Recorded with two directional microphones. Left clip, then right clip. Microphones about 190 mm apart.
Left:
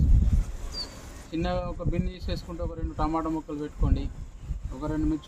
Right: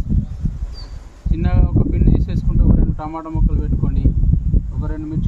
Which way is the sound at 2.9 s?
10° left (ahead or behind).